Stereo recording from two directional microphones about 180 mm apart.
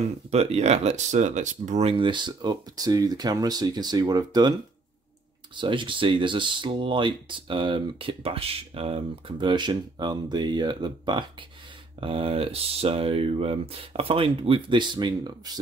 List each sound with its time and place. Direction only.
0.3 s speech: 35° right (ahead or behind)
5.6 s speech: 30° right (ahead or behind)